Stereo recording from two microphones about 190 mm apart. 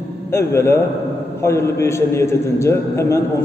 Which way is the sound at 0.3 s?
15° left (ahead or behind).